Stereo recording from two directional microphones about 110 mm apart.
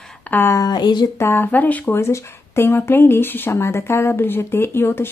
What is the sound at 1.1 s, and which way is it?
Speech, 20° left (ahead or behind).